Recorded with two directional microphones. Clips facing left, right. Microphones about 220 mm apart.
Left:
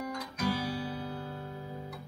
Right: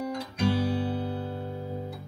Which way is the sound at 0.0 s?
30° right (ahead or behind).